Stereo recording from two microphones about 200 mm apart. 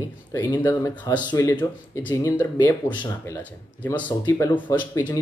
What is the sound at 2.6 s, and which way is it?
Speech, 20° left (ahead or behind).